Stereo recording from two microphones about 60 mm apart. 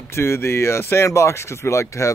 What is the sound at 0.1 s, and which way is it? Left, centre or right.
Speech, left.